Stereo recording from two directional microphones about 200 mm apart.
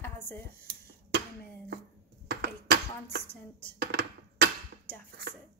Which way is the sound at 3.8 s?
55° right (ahead or behind).